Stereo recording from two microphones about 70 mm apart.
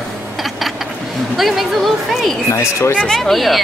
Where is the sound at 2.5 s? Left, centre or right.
Left.